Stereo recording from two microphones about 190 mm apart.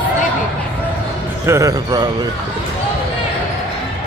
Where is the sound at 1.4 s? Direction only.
15° right (ahead or behind).